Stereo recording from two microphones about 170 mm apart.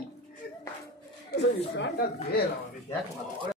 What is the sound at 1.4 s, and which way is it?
Speech, 90° left.